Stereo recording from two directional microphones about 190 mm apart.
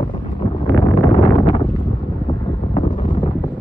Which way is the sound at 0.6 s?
20° left (ahead or behind).